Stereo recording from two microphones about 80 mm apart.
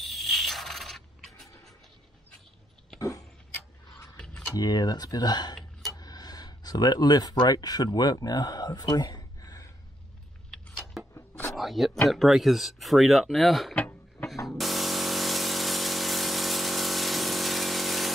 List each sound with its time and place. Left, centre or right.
0.0 s mechanisms: centre
3.0 s tick-tock: left
4.6 s speech: left
11.1 s a sound: left
11.5 s speech: centre
14.6 s a sound: centre